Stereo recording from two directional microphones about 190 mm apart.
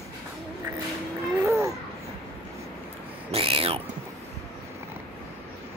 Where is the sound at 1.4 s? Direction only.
15° right (ahead or behind).